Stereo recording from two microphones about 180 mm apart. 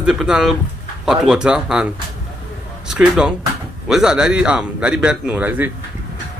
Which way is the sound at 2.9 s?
5° right (ahead or behind).